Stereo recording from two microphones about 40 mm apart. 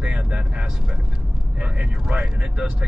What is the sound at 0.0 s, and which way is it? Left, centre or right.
Speech, right.